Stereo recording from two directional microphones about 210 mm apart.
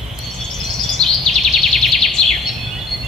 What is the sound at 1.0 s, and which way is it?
Bird, 5° left (ahead or behind).